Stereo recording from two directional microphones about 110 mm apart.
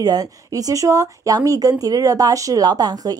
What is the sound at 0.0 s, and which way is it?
A woman's voice, 35° right (ahead or behind).